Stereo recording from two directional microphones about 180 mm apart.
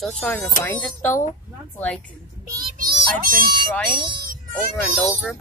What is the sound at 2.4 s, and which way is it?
Music, 50° right (ahead or behind).